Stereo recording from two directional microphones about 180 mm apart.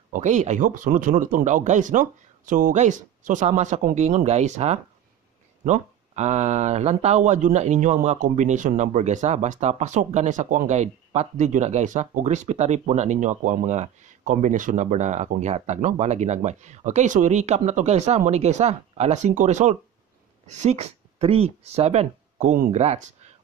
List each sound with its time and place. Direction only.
0.1 s speech: 40° right (ahead or behind)